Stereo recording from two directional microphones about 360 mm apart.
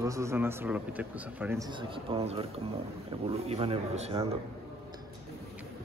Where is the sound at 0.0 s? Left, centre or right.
Centre.